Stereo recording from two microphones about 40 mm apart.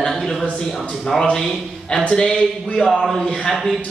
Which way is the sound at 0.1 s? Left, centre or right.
Centre.